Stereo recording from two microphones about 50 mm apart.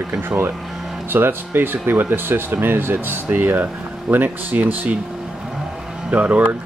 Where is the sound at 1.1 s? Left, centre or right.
Right.